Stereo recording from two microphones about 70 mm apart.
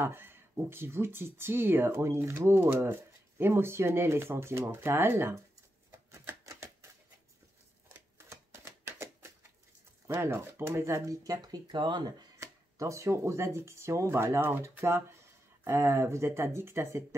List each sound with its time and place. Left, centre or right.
0.0 s speech: right
5.9 s typewriter: right
8.8 s typewriter: right
10.0 s speech: right
11.2 s speech: right
12.4 s speech: right